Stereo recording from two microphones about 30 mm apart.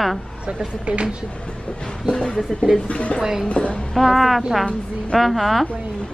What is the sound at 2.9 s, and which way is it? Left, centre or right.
A woman's voice, left.